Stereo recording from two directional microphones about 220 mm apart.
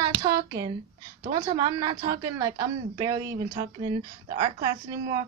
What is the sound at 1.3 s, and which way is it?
A woman's voice, 20° right (ahead or behind).